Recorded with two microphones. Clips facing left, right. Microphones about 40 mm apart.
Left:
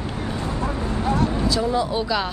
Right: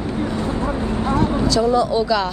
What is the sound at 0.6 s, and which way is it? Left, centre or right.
Vehicle, right.